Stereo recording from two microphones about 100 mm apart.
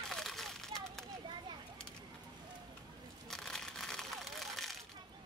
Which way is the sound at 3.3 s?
5° left (ahead or behind).